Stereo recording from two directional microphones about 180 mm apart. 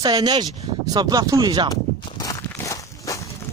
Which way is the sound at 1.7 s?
20° left (ahead or behind).